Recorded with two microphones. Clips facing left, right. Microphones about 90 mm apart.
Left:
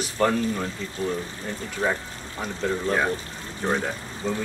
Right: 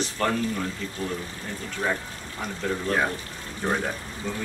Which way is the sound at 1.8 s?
25° left (ahead or behind).